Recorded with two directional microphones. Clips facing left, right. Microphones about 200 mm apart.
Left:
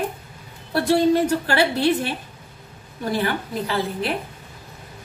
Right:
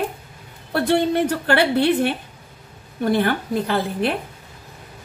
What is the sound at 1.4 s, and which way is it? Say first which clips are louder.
Speech: right 2 dB; 55° right (ahead or behind).